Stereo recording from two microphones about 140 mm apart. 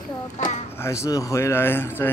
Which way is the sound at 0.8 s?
20° left (ahead or behind).